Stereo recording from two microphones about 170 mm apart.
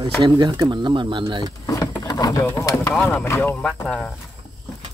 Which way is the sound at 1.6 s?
20° left (ahead or behind).